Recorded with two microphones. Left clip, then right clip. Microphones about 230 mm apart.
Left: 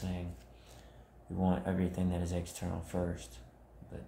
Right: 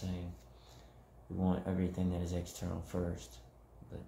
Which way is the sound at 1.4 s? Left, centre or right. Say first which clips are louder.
Left 3 dB; centre.